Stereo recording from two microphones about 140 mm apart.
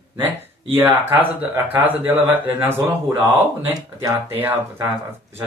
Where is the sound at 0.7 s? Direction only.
15° right (ahead or behind).